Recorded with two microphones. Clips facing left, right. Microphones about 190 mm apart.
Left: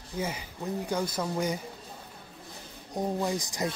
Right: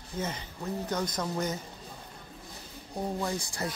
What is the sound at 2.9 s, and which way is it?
Speech, 15° left (ahead or behind).